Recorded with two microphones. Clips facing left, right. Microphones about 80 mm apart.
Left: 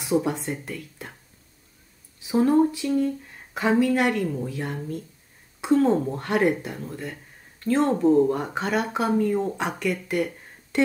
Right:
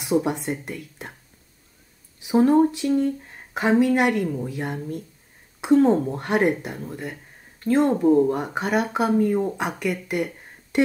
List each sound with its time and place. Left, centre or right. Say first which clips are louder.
0.0 s speech: right 1 dB; right
2.5 s speech: right 2 dB; right